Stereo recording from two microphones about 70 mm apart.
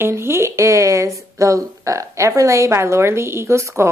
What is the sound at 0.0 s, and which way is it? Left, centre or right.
Speech, right.